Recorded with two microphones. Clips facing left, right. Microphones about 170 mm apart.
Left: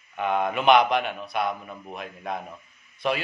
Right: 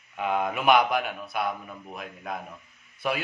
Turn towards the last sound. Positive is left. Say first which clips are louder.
# left 3 dB
turn(degrees=-5)  # may be behind; listen again after turning